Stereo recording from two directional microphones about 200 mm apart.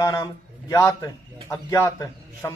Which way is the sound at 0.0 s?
20° left (ahead or behind).